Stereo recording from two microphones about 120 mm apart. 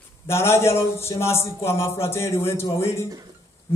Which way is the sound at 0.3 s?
20° left (ahead or behind).